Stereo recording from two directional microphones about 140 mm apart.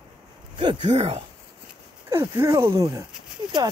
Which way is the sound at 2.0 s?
20° right (ahead or behind).